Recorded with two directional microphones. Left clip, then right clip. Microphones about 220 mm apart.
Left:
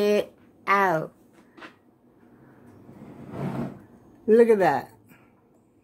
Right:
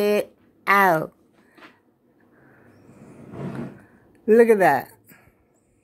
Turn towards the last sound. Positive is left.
turn(degrees=-25)  # may be behind; listen again after turning